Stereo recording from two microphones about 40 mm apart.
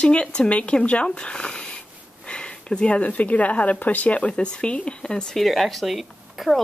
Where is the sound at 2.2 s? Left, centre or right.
Left.